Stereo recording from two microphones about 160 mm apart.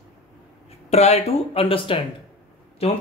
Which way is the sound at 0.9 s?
40° left (ahead or behind).